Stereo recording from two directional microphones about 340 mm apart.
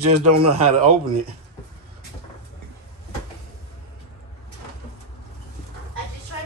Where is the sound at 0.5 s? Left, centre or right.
Centre.